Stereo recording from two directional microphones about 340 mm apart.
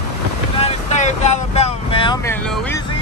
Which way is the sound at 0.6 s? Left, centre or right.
Centre.